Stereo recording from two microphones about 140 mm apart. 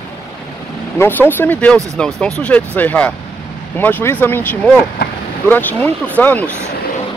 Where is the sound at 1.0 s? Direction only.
15° left (ahead or behind).